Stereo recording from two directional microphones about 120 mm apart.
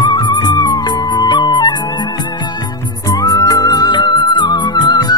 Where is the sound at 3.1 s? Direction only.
30° left (ahead or behind).